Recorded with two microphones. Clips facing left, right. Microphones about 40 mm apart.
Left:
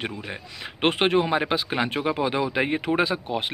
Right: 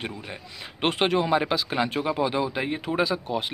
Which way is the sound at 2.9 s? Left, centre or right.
Left.